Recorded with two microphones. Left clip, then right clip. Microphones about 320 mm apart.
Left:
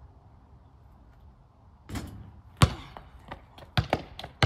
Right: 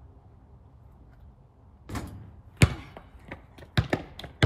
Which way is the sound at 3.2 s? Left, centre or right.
Left.